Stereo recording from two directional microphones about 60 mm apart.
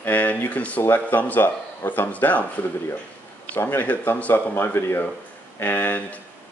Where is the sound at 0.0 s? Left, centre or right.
Left.